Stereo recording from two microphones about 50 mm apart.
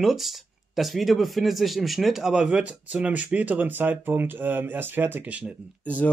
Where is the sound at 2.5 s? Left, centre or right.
Right.